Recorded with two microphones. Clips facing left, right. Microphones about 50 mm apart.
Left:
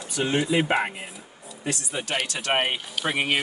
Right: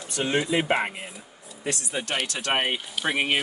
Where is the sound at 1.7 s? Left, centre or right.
Centre.